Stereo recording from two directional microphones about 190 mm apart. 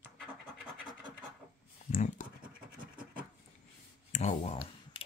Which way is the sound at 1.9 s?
45° left (ahead or behind).